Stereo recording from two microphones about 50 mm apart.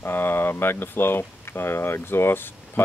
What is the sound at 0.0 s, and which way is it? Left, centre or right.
Speech, left.